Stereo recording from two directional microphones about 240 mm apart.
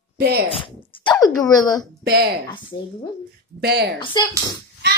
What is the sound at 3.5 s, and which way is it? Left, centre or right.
Speech, right.